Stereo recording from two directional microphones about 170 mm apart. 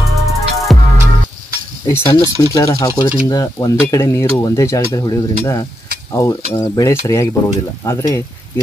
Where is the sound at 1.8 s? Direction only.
15° left (ahead or behind).